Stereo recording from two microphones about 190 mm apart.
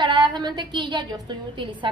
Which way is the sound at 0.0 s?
25° right (ahead or behind).